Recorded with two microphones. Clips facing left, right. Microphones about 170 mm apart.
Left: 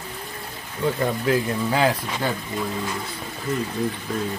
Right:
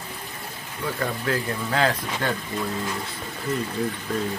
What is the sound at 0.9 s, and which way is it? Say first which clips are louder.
Speech: left 3 dB; 15° left (ahead or behind).